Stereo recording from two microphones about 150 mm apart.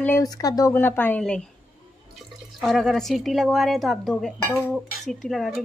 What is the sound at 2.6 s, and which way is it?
A woman's voice, centre (ahead or behind).